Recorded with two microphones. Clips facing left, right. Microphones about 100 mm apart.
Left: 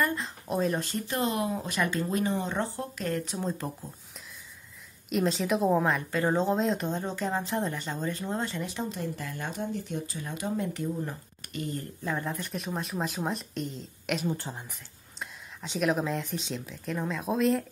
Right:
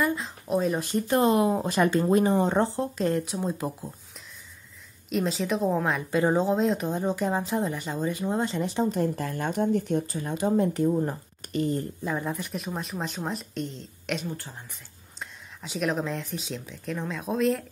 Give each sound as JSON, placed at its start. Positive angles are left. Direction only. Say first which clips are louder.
{"t": 0.0, "sound": "a sound", "louder": "right 2 dB", "side_deg": 0}
{"t": 0.7, "sound": "a woman's voice", "louder": "right 5 dB", "side_deg": -15}
{"t": 1.0, "sound": "speech", "louder": "right 10 dB", "side_deg": -30}
{"t": 3.3, "sound": "a woman's voice", "louder": "right 3 dB", "side_deg": -10}
{"t": 5.1, "sound": "speech", "louder": "even", "side_deg": 0}
{"t": 6.1, "sound": "a woman's voice", "louder": "right 6 dB", "side_deg": -15}
{"t": 6.4, "sound": "speech", "louder": "right 3 dB", "side_deg": 0}
{"t": 6.9, "sound": "a woman's voice", "louder": "right 4 dB", "side_deg": -10}
{"t": 8.8, "sound": "speech", "louder": "right 8 dB", "side_deg": -50}
{"t": 10.2, "sound": "speech", "louder": "right 7 dB", "side_deg": -35}
{"t": 12.0, "sound": "speech", "louder": "right 2 dB", "side_deg": -10}
{"t": 14.2, "sound": "speech", "louder": "left 4 dB", "side_deg": 20}
{"t": 15.1, "sound": "speech", "louder": "even", "side_deg": 0}